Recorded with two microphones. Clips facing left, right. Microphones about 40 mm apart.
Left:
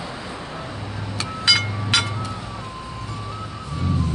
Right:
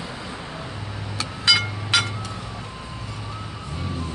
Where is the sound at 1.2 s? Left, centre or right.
Centre.